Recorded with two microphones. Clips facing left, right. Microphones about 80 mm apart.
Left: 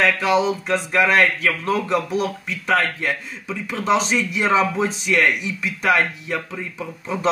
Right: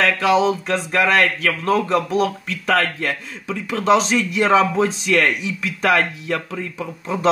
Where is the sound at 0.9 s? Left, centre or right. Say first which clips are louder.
Even; right.